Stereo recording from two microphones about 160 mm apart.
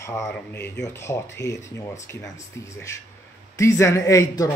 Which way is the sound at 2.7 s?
15° left (ahead or behind).